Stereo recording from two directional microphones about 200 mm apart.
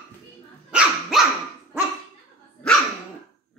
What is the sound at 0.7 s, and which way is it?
Dog, 5° right (ahead or behind).